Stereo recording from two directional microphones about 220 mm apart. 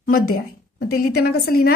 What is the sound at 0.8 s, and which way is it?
Speech, 45° left (ahead or behind).